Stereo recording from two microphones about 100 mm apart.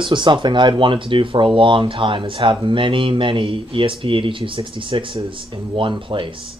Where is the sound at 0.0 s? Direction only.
50° right (ahead or behind).